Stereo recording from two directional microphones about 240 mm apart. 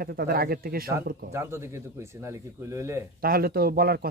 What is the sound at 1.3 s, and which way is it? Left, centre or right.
Speech, centre.